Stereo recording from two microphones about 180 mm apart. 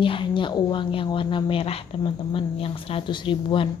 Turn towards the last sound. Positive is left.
turn(degrees=25)  # may be behind; listen again after turning